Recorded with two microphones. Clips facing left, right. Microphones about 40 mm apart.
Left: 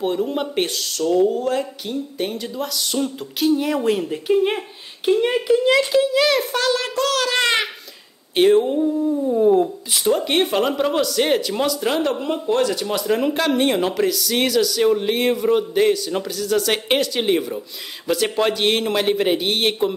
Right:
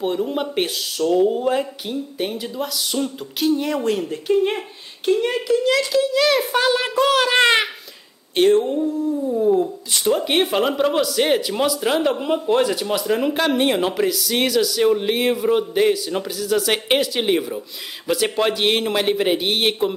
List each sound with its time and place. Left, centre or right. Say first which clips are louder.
0.0 s a child's voice: even; centre; by 6.0 s left
6.0 s a sound: even; centre
6.5 s a child's voice: right 2 dB; centre
8.4 s a sound: left 1 dB; centre
9.3 s speech: left 2 dB; left
9.9 s speech: even; centre
12.7 s speech: even; centre